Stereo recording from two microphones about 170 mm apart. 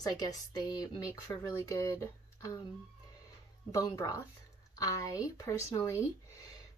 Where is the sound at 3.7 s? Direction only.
20° left (ahead or behind).